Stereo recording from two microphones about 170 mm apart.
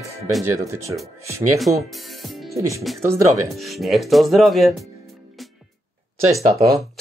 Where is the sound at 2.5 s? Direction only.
20° right (ahead or behind).